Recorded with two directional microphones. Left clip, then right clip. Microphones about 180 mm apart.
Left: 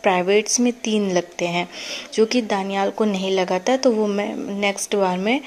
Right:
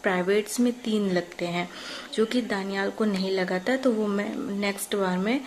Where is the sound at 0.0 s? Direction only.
30° left (ahead or behind).